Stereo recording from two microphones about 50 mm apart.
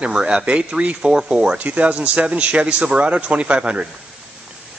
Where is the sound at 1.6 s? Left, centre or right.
Right.